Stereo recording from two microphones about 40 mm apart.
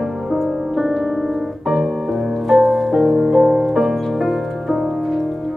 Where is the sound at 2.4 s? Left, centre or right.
Centre.